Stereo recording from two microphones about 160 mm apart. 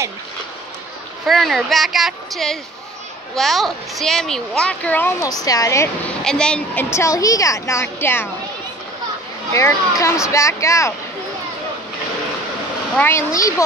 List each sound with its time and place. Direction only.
1.2 s speech: centre (ahead or behind); by 5.9 s 20° left (ahead or behind)
6.0 s speech: 5° left (ahead or behind)
9.5 s speech: 20° left (ahead or behind)
12.9 s speech: 15° left (ahead or behind)